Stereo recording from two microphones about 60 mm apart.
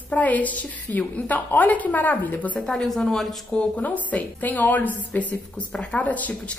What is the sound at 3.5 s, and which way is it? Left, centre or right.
A woman's voice, left.